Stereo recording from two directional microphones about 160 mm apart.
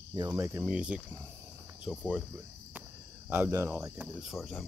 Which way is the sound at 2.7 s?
10° right (ahead or behind).